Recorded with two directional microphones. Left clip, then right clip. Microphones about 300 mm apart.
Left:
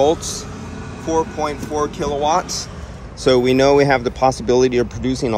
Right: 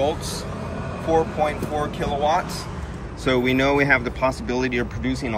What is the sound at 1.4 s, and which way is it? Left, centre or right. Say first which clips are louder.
Speech: left 3 dB; centre.